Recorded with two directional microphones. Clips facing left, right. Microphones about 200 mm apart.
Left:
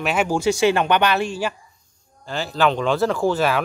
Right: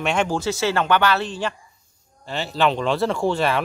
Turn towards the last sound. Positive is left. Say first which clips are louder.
# left 1 dB
turn(degrees=0)  # may be behind; listen again after turning